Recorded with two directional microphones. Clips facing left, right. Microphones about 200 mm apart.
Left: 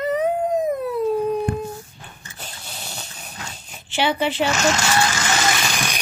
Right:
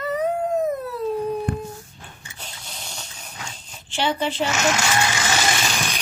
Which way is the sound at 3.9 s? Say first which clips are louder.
Left 2 dB; 65° left (ahead or behind).